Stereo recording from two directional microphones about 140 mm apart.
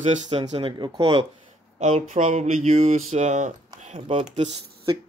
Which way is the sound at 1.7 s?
55° right (ahead or behind).